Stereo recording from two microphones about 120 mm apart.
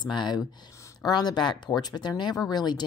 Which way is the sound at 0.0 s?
40° left (ahead or behind).